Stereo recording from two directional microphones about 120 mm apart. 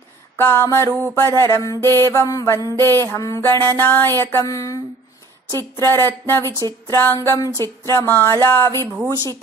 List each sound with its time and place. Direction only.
0.4 s mantra: 20° left (ahead or behind)
5.8 s mantra: 20° left (ahead or behind)
6.9 s music: 15° left (ahead or behind)
7.2 s mantra: 25° left (ahead or behind)